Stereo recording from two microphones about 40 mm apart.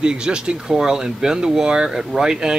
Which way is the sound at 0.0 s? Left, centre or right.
Right.